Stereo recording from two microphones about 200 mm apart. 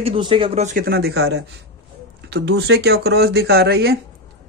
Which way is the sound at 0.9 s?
55° right (ahead or behind).